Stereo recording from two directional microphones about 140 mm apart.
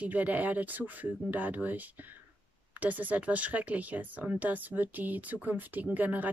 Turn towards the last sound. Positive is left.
turn(degrees=-10)  # may be behind; listen again after turning